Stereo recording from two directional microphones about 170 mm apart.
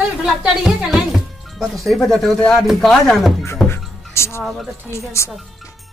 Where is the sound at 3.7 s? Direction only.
15° left (ahead or behind).